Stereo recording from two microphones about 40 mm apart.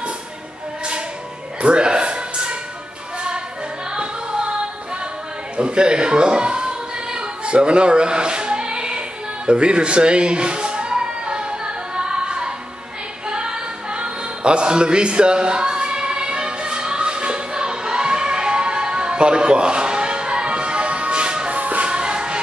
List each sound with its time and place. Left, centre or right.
1.6 s a sound: right
3.9 s music: right
5.6 s a sound: right
9.5 s music: right
21.5 s music: right
21.8 s music: right